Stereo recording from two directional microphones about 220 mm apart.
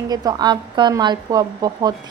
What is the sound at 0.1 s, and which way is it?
A woman's voice, 15° right (ahead or behind).